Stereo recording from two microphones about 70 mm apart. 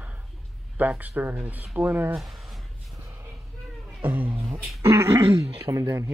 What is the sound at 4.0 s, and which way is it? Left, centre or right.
Beatboxing, right.